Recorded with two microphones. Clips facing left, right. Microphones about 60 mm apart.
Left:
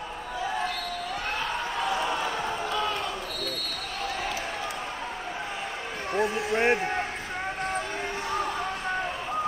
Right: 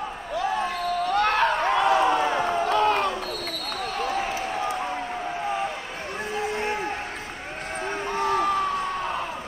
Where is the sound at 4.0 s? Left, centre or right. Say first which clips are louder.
Right 4 dB; right.